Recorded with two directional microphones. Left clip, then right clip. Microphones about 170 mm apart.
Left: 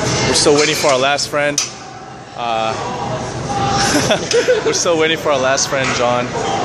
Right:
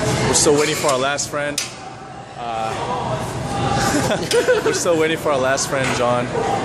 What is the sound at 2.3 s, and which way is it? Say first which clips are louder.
Vehicle: left 6 dB; 50° left (ahead or behind).